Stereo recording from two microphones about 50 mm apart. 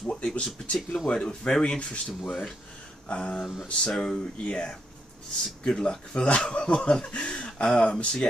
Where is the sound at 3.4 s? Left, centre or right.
Centre.